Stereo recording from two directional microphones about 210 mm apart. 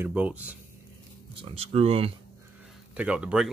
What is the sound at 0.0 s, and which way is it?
Speech, 5° right (ahead or behind).